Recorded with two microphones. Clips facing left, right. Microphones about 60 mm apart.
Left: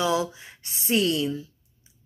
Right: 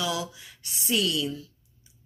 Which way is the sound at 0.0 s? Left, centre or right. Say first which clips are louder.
Left 6 dB; left.